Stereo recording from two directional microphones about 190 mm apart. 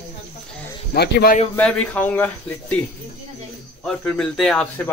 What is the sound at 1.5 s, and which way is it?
Speech, 5° left (ahead or behind).